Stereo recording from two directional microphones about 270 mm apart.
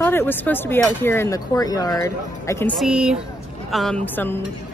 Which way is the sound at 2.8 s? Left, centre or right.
Centre.